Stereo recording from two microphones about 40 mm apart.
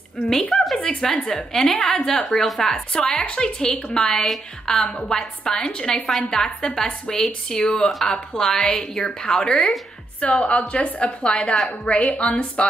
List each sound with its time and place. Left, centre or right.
0.5 s a sound: centre
0.8 s speech: centre
2.4 s speech: centre
2.7 s a woman's voice: centre
9.5 s speech: centre
10.4 s a woman's voice: left
11.2 s speech: centre
11.8 s a woman's voice: left